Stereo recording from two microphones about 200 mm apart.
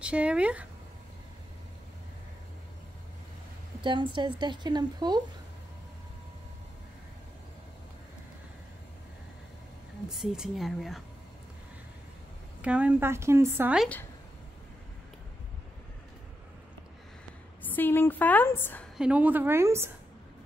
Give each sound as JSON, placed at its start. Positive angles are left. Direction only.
{"t": 0.0, "sound": "speech", "side_deg": -5}
{"t": 3.8, "sound": "speech", "side_deg": -25}
{"t": 10.0, "sound": "speech", "side_deg": -5}
{"t": 12.6, "sound": "a woman's voice", "side_deg": -5}
{"t": 17.6, "sound": "a woman's voice", "side_deg": 10}
{"t": 18.9, "sound": "a woman's voice", "side_deg": -5}